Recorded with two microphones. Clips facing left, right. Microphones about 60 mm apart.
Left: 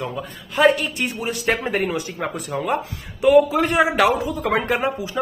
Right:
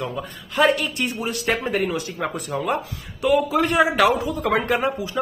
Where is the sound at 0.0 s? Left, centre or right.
Centre.